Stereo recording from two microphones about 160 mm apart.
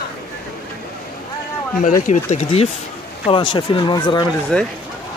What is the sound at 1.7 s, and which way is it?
Speech, 55° left (ahead or behind).